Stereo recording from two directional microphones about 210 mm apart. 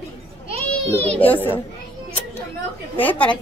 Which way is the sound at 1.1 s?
10° left (ahead or behind).